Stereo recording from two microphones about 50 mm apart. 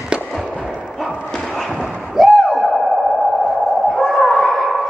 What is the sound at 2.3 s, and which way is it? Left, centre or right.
Sonar, centre.